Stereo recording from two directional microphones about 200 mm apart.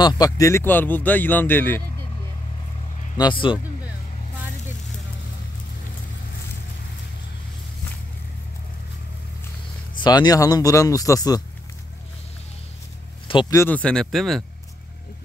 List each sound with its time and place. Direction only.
0.0 s speech: 15° left (ahead or behind)
3.2 s speech: 25° left (ahead or behind)
9.9 s speech: 20° left (ahead or behind)
13.3 s speech: 20° left (ahead or behind); by 14.4 s centre (ahead or behind)